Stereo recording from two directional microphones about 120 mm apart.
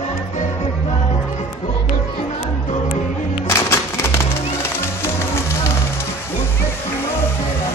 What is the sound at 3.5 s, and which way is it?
Music, 20° left (ahead or behind).